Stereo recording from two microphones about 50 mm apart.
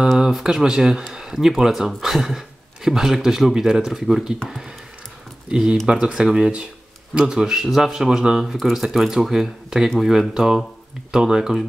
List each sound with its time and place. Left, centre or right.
0.4 s speech: centre